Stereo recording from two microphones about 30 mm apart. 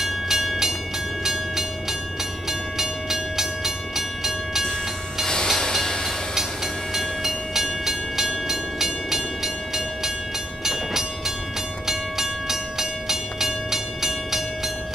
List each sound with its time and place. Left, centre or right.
0.0 s train: centre
5.2 s train: left
6.9 s train: centre